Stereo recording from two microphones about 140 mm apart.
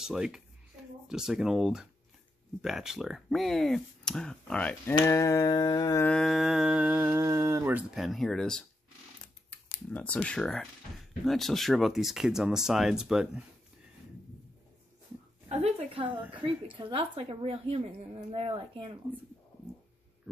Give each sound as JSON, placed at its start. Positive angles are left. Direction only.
{"t": 0.0, "sound": "speech", "side_deg": -5}
{"t": 5.0, "sound": "carnatic music", "side_deg": 20}
{"t": 6.0, "sound": "speech", "side_deg": 5}
{"t": 7.9, "sound": "speech", "side_deg": 0}
{"t": 15.4, "sound": "a woman's voice", "side_deg": -45}